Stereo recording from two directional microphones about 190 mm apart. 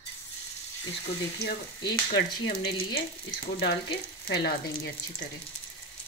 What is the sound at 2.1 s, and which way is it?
Frying, 55° left (ahead or behind).